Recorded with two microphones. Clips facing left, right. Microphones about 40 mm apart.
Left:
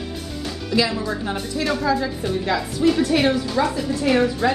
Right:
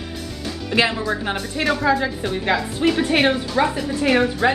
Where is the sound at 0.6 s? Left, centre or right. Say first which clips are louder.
Right 2 dB; right.